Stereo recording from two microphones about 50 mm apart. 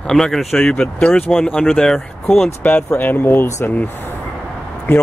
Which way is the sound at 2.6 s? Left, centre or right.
Left.